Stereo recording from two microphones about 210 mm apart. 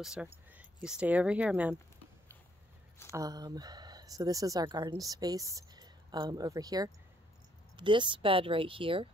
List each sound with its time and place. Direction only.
0.0 s speech: 5° right (ahead or behind)
3.1 s speech: 15° right (ahead or behind)